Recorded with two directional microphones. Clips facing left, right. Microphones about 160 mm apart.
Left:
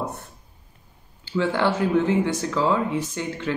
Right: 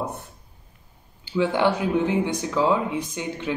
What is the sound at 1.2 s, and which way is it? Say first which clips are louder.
A woman's voice: right 1 dB; 15° right (ahead or behind).